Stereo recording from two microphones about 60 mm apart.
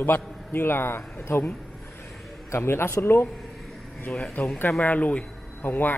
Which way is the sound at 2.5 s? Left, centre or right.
Left.